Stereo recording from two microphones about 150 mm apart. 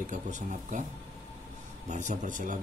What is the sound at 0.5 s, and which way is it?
Speech, 55° right (ahead or behind).